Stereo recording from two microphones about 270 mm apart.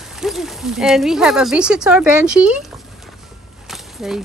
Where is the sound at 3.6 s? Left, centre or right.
Centre.